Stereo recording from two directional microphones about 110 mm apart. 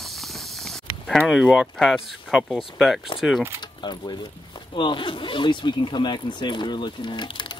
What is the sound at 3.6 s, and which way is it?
Speech, 40° left (ahead or behind).